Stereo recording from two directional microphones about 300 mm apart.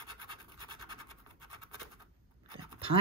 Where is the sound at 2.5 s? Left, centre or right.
Centre.